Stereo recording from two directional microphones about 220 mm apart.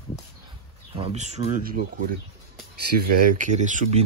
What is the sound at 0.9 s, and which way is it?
Speech, 30° right (ahead or behind).